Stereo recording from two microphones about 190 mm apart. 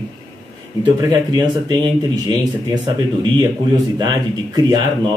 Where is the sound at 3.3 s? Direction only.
20° right (ahead or behind).